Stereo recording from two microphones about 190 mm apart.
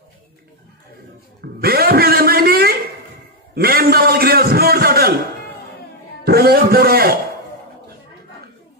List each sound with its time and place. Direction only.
1.4 s a sound: 55° right (ahead or behind)
3.5 s a man's voice: 55° right (ahead or behind)
6.2 s a man's voice: 55° right (ahead or behind)